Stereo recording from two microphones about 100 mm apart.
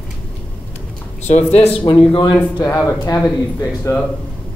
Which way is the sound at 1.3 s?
90° left.